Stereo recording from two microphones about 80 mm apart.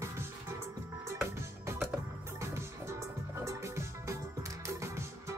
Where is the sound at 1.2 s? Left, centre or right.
Right.